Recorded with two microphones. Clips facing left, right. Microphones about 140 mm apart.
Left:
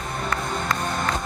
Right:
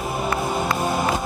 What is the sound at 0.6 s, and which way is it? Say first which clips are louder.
Music: right 3 dB; 5° right (ahead or behind).